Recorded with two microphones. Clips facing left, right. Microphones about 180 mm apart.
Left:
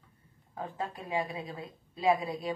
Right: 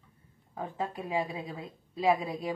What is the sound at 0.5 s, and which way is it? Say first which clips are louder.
A woman's voice: right 2 dB; 20° right (ahead or behind).